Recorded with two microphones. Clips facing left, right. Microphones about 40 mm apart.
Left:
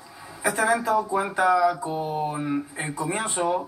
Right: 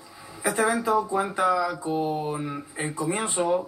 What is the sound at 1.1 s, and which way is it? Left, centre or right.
Speech, left.